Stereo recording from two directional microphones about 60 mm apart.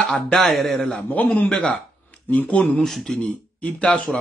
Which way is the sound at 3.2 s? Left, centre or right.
Left.